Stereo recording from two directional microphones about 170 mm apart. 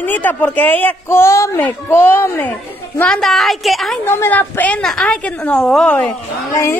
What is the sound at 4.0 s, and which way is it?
Speech, 10° left (ahead or behind).